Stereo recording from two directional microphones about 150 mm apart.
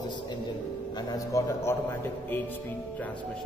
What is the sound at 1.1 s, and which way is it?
Speech, 20° left (ahead or behind).